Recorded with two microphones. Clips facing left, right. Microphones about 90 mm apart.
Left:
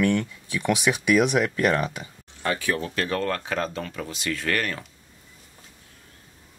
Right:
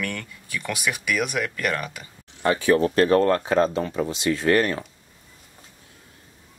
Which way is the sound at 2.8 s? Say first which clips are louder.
Right 9 dB; 40° right (ahead or behind).